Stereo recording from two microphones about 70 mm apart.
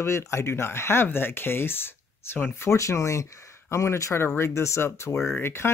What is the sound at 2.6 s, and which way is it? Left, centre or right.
Speech, left.